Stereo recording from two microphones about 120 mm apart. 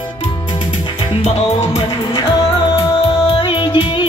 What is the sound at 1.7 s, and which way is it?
Music, 50° left (ahead or behind).